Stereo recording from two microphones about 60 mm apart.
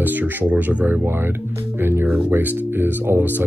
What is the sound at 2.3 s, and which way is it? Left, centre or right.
Speech, right.